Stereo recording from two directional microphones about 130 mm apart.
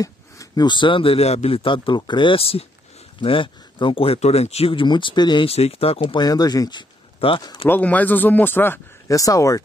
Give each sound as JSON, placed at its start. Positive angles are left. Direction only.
{"t": 0.0, "sound": "a man's voice", "side_deg": 30}
{"t": 5.5, "sound": "a man's voice", "side_deg": 50}
{"t": 7.2, "sound": "speech", "side_deg": 45}
{"t": 7.6, "sound": "speech", "side_deg": 15}